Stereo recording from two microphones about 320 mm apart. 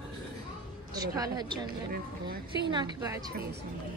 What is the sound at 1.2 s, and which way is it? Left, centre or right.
Speech, centre.